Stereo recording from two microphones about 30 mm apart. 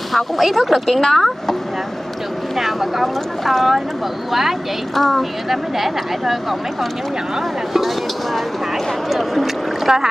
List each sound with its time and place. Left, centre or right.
0.1 s speech: centre
0.8 s speech: centre
2.5 s speech: centre
4.9 s speech: centre
5.5 s speech: centre
7.3 s speech: centre
9.1 s speech: centre
9.9 s speech: centre